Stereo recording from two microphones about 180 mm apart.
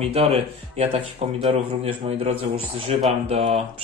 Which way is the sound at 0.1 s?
35° right (ahead or behind).